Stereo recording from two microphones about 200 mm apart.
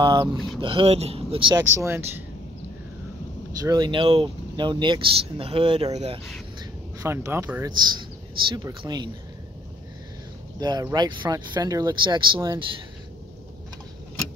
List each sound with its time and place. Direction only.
0.0 s speech: 20° right (ahead or behind)
1.6 s speech: 15° right (ahead or behind)
3.6 s speech: 20° right (ahead or behind)
7.0 s speech: 15° right (ahead or behind)
10.6 s speech: 20° right (ahead or behind)